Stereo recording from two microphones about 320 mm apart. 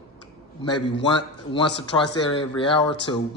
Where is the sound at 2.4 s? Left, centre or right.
Centre.